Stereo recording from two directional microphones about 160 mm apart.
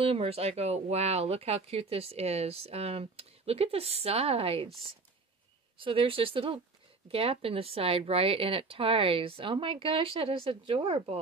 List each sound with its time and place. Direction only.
0.0 s speech: 35° right (ahead or behind)
5.8 s speech: 35° right (ahead or behind)